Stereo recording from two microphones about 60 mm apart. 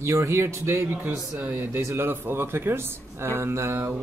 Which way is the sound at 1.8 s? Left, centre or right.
Right.